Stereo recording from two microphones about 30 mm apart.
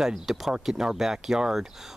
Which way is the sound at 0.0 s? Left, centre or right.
Centre.